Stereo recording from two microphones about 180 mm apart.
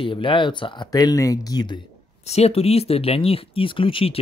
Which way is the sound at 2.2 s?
35° left (ahead or behind).